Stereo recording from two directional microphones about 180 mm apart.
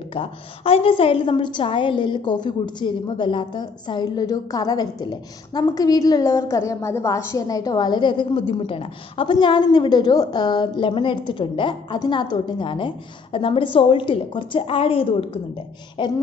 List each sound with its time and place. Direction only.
0.1 s a woman's voice: 30° left (ahead or behind)